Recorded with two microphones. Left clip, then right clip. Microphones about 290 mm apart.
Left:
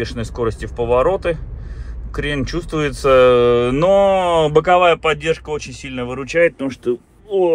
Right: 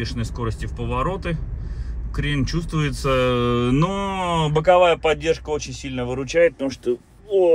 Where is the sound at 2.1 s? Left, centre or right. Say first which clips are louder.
Left 4 dB; centre.